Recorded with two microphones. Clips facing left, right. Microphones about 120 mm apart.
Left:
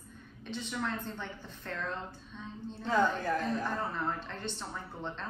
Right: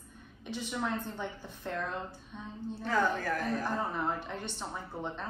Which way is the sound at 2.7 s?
20° left (ahead or behind).